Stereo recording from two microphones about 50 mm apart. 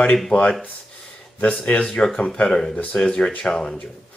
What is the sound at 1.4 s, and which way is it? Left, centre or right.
Speech, left.